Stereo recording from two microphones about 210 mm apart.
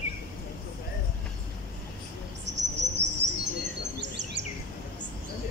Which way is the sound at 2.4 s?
55° right (ahead or behind).